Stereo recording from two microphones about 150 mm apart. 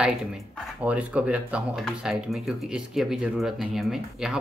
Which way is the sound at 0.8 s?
10° right (ahead or behind).